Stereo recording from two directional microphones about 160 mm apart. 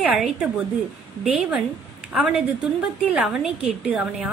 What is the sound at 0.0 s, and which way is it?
A woman's voice, 5° right (ahead or behind).